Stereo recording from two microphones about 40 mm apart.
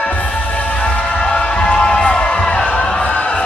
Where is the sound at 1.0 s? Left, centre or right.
Left.